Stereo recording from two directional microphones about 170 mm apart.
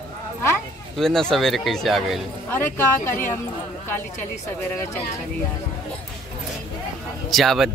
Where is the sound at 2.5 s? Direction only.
10° left (ahead or behind).